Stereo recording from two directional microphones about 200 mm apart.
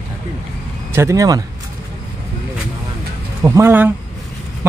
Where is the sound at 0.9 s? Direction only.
15° right (ahead or behind).